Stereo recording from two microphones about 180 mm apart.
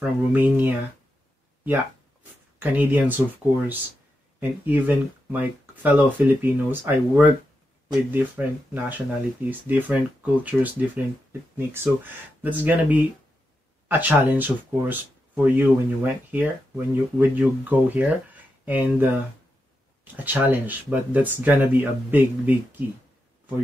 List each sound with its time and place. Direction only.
0.0 s speech: 10° right (ahead or behind)
2.6 s speech: 10° right (ahead or behind)
4.4 s speech: 10° right (ahead or behind)
20.2 s speech: 10° right (ahead or behind)